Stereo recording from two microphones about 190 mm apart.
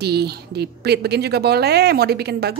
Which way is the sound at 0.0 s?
60° right (ahead or behind).